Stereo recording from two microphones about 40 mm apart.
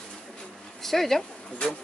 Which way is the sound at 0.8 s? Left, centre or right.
Centre.